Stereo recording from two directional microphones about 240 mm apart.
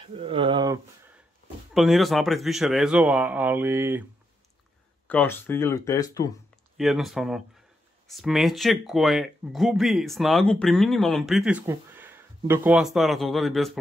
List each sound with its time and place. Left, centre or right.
0.0 s a sound: right
1.7 s speech: centre
5.0 s speech: centre
6.8 s speech: centre